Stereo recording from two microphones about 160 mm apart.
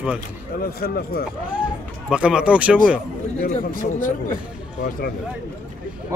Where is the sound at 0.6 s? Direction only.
70° left (ahead or behind).